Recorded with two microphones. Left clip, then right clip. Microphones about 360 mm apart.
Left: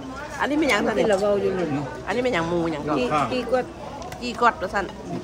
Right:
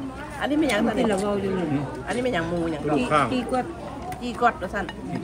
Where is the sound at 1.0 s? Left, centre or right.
Centre.